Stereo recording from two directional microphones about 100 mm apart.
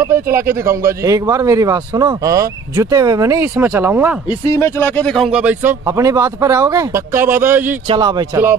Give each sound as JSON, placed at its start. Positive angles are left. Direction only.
{"t": 0.1, "sound": "a man's voice", "side_deg": -25}
{"t": 4.5, "sound": "speech", "side_deg": 30}
{"t": 5.0, "sound": "speech", "side_deg": 5}
{"t": 5.3, "sound": "speech", "side_deg": -15}
{"t": 5.9, "sound": "a man's voice", "side_deg": -35}
{"t": 7.2, "sound": "a man's voice", "side_deg": -25}
{"t": 7.9, "sound": "speech", "side_deg": -50}